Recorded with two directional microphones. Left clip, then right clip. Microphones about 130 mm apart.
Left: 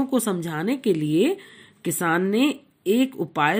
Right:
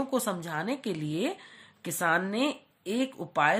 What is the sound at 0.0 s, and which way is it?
A woman's voice, 15° left (ahead or behind).